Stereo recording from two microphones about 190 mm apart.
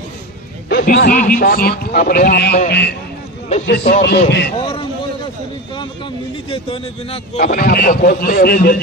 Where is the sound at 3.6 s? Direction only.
60° left (ahead or behind).